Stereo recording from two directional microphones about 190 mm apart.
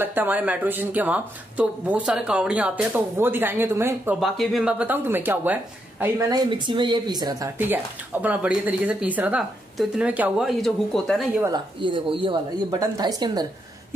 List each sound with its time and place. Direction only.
0.0 s speech: 10° right (ahead or behind)
4.2 s speech: centre (ahead or behind)
11.4 s a woman's voice: 25° right (ahead or behind)